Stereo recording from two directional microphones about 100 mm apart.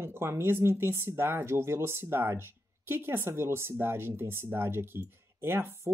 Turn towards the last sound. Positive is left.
turn(degrees=-25)  # may be behind; listen again after turning